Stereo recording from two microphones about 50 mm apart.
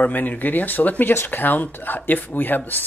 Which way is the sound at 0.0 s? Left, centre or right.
Left.